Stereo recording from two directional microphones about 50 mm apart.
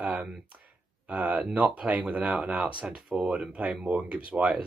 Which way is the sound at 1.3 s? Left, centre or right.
Right.